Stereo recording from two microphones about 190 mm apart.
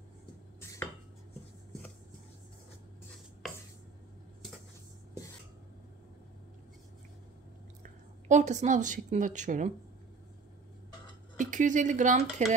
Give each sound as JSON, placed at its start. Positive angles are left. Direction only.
{"t": 7.8, "sound": "a woman's voice", "side_deg": -40}
{"t": 11.3, "sound": "speech", "side_deg": -40}